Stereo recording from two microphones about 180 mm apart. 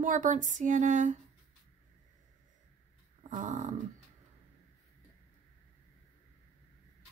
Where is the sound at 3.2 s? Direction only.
45° right (ahead or behind).